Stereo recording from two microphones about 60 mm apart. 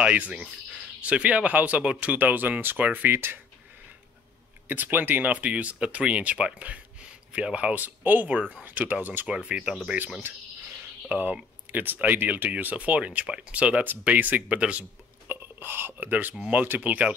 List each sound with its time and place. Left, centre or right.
0.0 s speech: right
3.1 s speech: right
4.6 s speech: right
9.3 s speech: centre
10.3 s speech: right
11.1 s speech: right
14.5 s a man's voice: centre
14.8 s a sound: right
16.0 s speech: right